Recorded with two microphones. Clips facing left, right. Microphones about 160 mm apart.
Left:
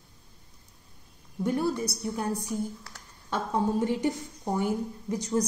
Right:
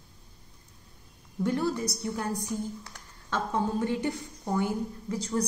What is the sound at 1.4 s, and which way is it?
A woman's voice, 10° left (ahead or behind).